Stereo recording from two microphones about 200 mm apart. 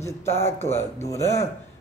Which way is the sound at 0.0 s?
15° left (ahead or behind).